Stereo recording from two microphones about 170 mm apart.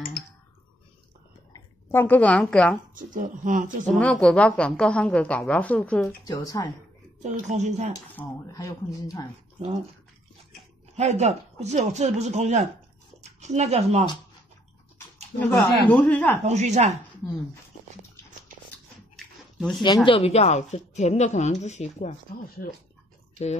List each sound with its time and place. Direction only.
1.5 s speech: 15° left (ahead or behind)
2.9 s speech: 50° right (ahead or behind)
3.8 s a woman's voice: 5° left (ahead or behind)
6.2 s speech: 20° left (ahead or behind)
7.2 s speech: 45° right (ahead or behind)
8.2 s speech: 20° left (ahead or behind)
11.0 s speech: 40° right (ahead or behind)
15.9 s a woman's voice: 10° left (ahead or behind)
16.4 s speech: 40° right (ahead or behind)
19.1 s a sound: centre (ahead or behind)
20.1 s a woman's voice: 35° left (ahead or behind)
22.6 s speech: 60° left (ahead or behind)